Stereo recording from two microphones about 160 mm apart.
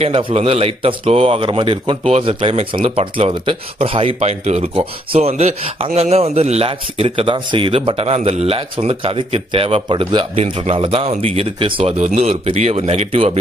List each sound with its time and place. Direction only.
0.0 s speech: 40° right (ahead or behind)
12.0 s speech: 45° right (ahead or behind)